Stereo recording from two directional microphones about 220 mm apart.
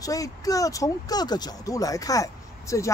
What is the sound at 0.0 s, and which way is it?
Speech, 15° left (ahead or behind).